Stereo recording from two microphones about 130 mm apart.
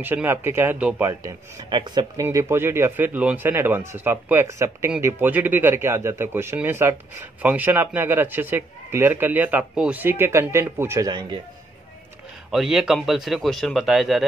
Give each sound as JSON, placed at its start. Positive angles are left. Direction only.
{"t": 0.0, "sound": "speech", "side_deg": -15}
{"t": 1.2, "sound": "speech", "side_deg": -35}
{"t": 2.2, "sound": "speech", "side_deg": -20}
{"t": 11.1, "sound": "speech", "side_deg": -35}
{"t": 12.4, "sound": "speech", "side_deg": 0}